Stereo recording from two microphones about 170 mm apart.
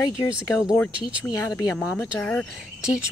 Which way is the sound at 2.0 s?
10° left (ahead or behind).